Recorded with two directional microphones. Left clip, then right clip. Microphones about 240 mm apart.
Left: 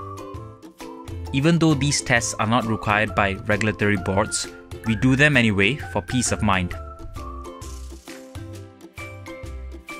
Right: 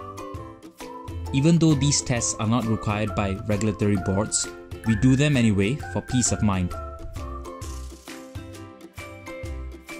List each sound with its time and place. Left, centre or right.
1.3 s speech: left